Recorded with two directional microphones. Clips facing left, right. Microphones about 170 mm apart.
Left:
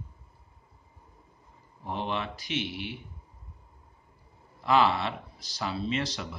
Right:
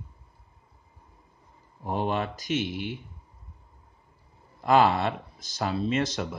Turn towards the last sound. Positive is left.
turn(degrees=-45)  # may be behind; listen again after turning